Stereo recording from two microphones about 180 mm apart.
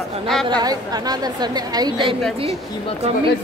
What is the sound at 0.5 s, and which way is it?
A woman's voice, 20° right (ahead or behind).